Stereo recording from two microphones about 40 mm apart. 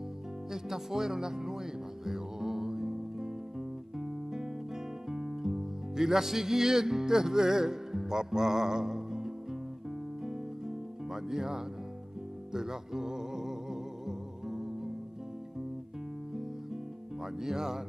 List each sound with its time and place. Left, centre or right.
0.5 s music: centre
17.4 s speech: centre